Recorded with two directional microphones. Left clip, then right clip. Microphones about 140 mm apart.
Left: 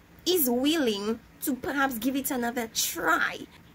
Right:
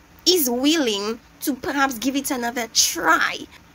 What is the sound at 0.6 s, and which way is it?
A woman's voice, 15° left (ahead or behind).